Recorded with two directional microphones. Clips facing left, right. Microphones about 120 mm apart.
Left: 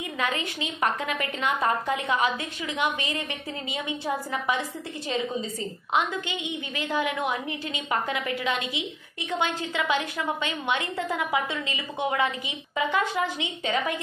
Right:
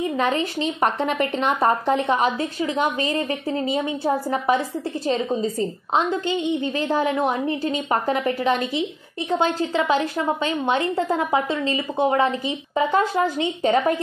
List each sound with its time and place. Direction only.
0.1 s a woman's voice: 30° right (ahead or behind)